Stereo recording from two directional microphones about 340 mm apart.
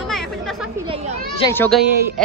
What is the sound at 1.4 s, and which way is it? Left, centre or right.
Speech, centre.